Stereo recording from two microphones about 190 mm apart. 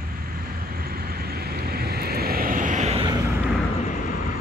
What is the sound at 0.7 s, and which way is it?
Vehicle, 55° right (ahead or behind).